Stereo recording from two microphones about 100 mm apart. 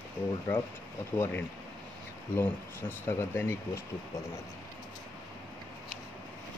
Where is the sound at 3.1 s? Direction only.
25° left (ahead or behind).